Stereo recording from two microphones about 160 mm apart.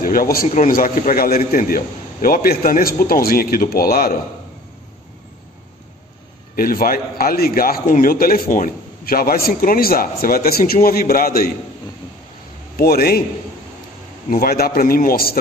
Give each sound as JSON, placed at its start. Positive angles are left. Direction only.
{"t": 0.0, "sound": "a man's voice", "side_deg": 65}
{"t": 6.5, "sound": "a man's voice", "side_deg": 65}
{"t": 12.7, "sound": "a man's voice", "side_deg": 70}
{"t": 14.3, "sound": "a man's voice", "side_deg": 70}